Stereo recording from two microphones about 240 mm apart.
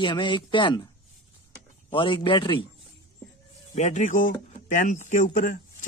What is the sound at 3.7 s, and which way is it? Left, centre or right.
Speech, left.